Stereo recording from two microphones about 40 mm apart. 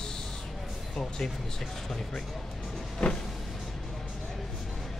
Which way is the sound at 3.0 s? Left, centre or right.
Centre.